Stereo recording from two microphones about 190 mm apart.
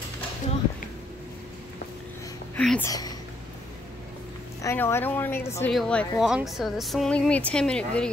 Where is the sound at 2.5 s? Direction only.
5° left (ahead or behind).